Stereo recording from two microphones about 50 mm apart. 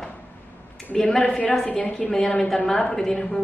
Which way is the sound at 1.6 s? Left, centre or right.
Left.